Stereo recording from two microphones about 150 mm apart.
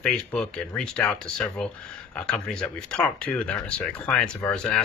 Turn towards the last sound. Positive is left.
turn(degrees=5)  # may be behind; listen again after turning